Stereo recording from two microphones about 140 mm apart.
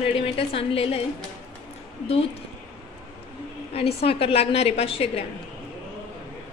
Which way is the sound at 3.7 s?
45° left (ahead or behind).